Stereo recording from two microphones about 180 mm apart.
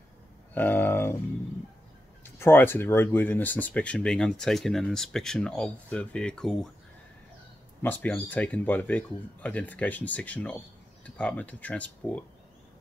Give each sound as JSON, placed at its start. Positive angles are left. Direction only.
{"t": 0.6, "sound": "speech", "side_deg": 10}
{"t": 2.2, "sound": "speech", "side_deg": 15}
{"t": 7.8, "sound": "speech", "side_deg": 10}